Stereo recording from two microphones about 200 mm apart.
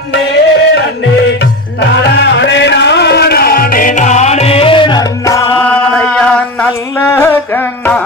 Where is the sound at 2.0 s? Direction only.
60° left (ahead or behind).